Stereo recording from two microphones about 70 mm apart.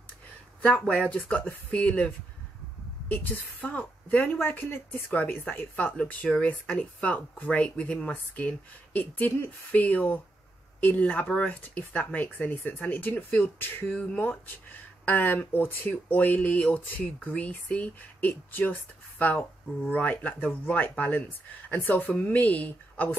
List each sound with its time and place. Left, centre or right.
0.6 s speech: centre
3.3 s speech: centre